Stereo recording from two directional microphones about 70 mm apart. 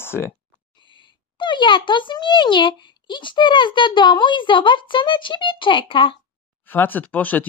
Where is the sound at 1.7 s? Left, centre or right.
Left.